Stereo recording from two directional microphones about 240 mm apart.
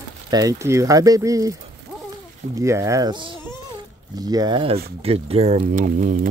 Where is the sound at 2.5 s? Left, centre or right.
Centre.